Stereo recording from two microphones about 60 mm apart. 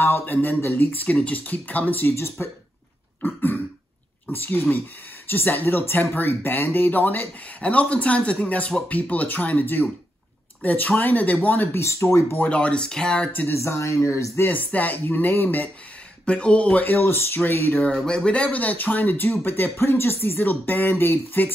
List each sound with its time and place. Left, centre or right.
0.2 s speech: left
1.0 s speech: left
4.3 s speech: left
11.7 s speech: left
12.4 s speech: centre
13.5 s speech: left
16.3 s speech: centre
16.8 s speech: left
18.0 s speech: centre; by 21.5 s left